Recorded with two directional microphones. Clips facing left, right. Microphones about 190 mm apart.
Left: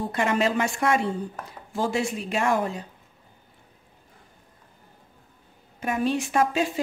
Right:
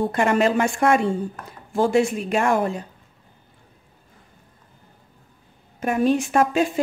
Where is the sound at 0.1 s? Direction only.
50° right (ahead or behind).